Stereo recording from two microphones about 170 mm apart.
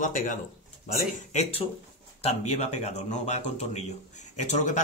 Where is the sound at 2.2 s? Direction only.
40° left (ahead or behind).